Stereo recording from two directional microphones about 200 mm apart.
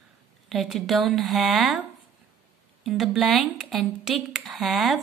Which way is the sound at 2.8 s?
Centre (ahead or behind).